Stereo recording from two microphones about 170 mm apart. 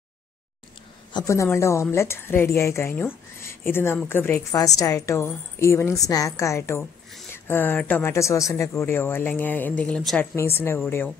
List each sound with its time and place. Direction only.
1.1 s a woman's voice: 20° left (ahead or behind)
6.8 s zipper: centre (ahead or behind)
7.3 s a woman's voice: 15° left (ahead or behind)